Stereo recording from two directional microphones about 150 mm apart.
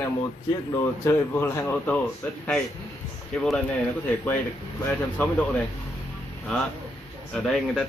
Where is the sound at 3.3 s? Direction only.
5° left (ahead or behind).